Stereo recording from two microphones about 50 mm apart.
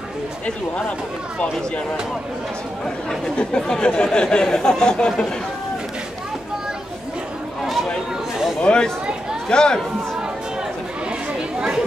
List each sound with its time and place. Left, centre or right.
3.1 s speech: centre
8.5 s speech: centre